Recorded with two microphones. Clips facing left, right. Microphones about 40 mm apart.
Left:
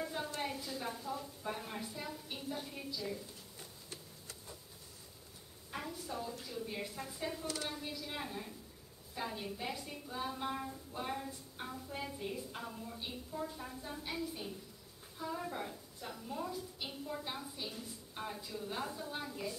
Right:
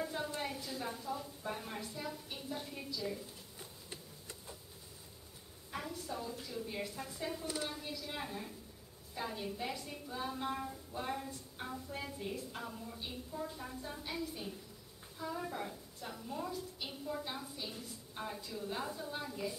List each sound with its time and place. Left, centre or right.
0.0 s a sound: centre
0.4 s a woman's voice: centre
3.9 s tick-tock: centre
5.7 s a woman's voice: centre